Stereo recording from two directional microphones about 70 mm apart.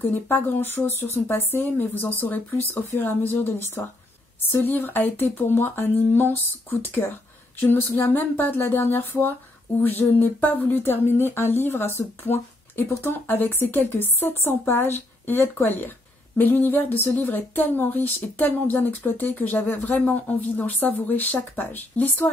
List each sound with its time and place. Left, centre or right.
0.0 s speech: left